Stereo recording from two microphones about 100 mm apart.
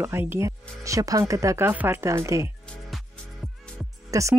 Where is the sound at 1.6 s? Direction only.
20° right (ahead or behind).